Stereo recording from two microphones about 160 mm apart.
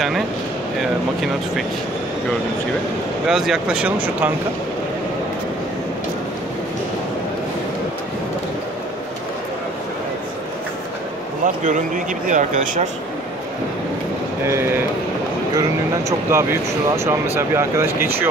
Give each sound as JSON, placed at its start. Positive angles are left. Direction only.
{"t": 3.3, "sound": "speech", "side_deg": -5}
{"t": 11.4, "sound": "speech", "side_deg": -55}
{"t": 14.4, "sound": "speech", "side_deg": -15}
{"t": 16.1, "sound": "speech", "side_deg": -15}